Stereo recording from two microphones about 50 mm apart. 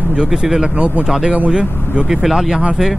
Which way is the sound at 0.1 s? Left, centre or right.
Centre.